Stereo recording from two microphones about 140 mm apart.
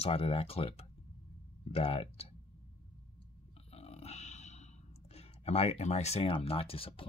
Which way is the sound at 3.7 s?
45° left (ahead or behind).